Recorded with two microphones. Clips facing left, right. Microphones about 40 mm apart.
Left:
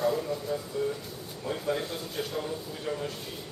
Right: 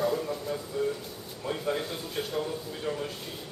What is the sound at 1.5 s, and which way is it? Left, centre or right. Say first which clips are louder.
Speech: even; centre.